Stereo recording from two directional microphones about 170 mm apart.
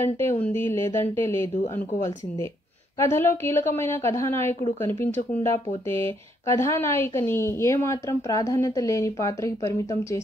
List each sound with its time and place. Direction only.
0.0 s a woman's voice: 15° left (ahead or behind)
3.0 s a woman's voice: 15° left (ahead or behind)